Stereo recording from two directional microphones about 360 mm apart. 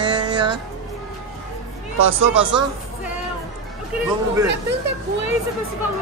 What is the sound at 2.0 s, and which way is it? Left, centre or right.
Speech, right.